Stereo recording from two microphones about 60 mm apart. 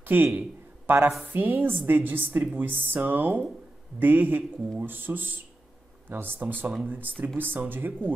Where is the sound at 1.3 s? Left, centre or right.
Right.